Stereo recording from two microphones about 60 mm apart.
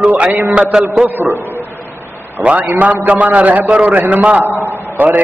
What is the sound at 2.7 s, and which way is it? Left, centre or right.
A man's voice, right.